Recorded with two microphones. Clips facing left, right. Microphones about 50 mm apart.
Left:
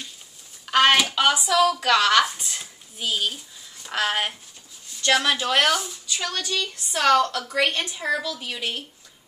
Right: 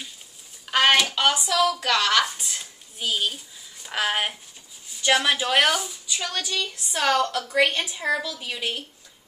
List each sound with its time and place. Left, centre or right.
0.7 s a woman's voice: centre